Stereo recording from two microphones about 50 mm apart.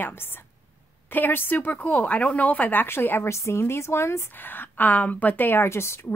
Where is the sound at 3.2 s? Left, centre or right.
Left.